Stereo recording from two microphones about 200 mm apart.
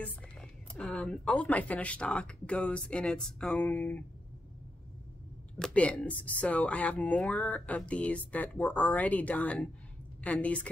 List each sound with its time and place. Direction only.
0.0 s a woman's voice: 5° left (ahead or behind)
5.6 s speech: 5° left (ahead or behind)